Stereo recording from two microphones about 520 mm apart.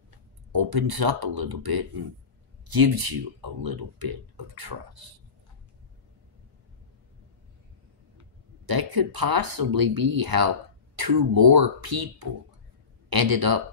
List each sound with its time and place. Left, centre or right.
0.5 s speech: right
8.6 s speech: right